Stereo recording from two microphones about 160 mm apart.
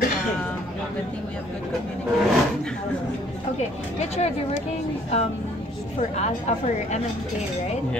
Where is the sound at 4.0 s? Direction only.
45° left (ahead or behind).